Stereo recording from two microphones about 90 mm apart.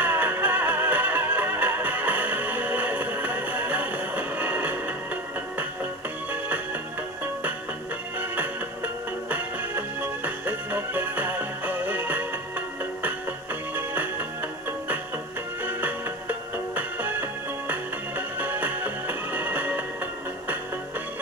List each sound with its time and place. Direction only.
0.0 s music: 20° right (ahead or behind)
8.4 s music: 20° right (ahead or behind)
15.6 s music: 20° right (ahead or behind)